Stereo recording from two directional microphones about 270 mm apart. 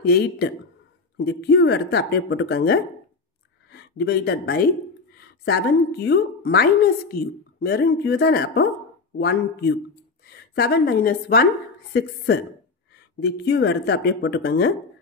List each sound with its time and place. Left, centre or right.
0.0 s a woman's voice: left
13.2 s a woman's voice: left